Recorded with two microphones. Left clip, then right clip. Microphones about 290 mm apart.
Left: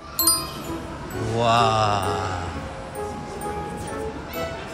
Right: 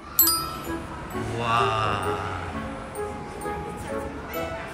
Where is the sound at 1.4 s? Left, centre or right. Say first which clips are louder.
Left 5 dB; centre.